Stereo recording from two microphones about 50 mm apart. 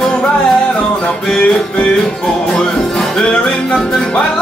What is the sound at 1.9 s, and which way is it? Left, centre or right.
Music, centre.